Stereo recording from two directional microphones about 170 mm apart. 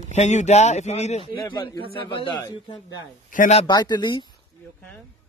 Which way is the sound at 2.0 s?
30° left (ahead or behind).